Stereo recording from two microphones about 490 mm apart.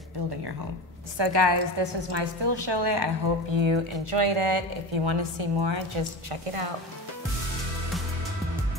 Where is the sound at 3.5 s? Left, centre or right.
Right.